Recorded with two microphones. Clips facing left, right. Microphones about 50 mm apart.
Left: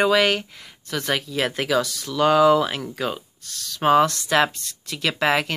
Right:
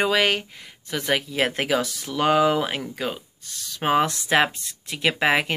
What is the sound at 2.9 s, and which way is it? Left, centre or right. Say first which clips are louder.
Speech: left 2 dB; centre.